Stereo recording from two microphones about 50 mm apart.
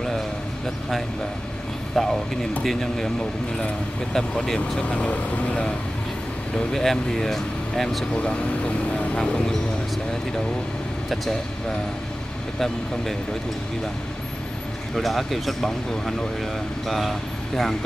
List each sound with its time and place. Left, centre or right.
2.0 s speech: centre
4.1 s speech: centre
4.7 s speech: left
6.7 s speech: centre
8.2 s speech: left
12.5 s speech: centre
15.0 s speech: centre